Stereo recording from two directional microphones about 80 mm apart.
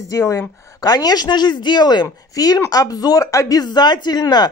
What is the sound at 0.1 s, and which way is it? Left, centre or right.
Speech, left.